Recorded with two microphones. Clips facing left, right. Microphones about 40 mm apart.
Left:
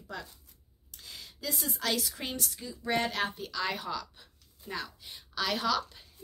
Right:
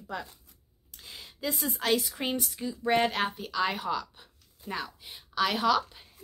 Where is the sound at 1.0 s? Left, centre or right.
Right.